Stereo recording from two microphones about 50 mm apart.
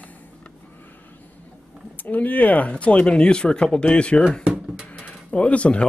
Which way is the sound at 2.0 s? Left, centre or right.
Left.